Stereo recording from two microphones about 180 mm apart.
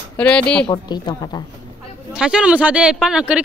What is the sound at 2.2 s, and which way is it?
Speech, 5° right (ahead or behind).